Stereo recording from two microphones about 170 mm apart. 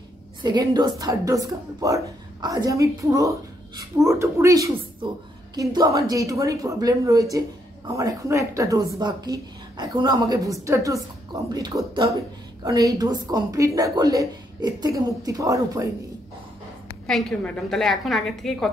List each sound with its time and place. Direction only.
0.4 s a woman's voice: 25° right (ahead or behind)
17.0 s a woman's voice: 5° left (ahead or behind)